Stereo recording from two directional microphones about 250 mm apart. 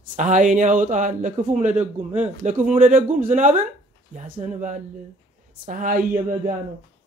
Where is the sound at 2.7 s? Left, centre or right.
Right.